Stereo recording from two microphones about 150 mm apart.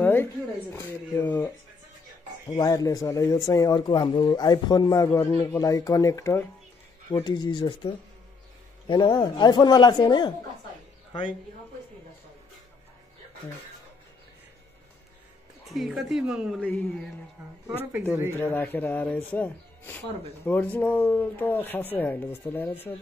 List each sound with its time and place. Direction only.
0.0 s a sound: 15° left (ahead or behind)
2.5 s speech: 25° left (ahead or behind)
7.2 s speech: 30° left (ahead or behind)
15.7 s a woman's voice: centre (ahead or behind)
16.6 s speech: 5° left (ahead or behind)
17.6 s speech: 10° right (ahead or behind)
18.4 s speech: 15° left (ahead or behind)